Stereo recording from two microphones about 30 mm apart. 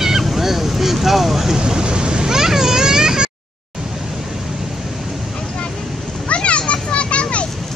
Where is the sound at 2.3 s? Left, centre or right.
Centre.